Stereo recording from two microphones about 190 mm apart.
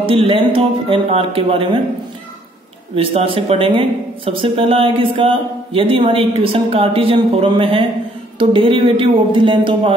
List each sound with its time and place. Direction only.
0.0 s speech: 30° right (ahead or behind)
3.0 s speech: 30° right (ahead or behind)